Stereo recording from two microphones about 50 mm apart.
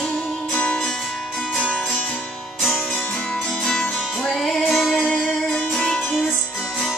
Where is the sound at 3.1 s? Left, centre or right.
Centre.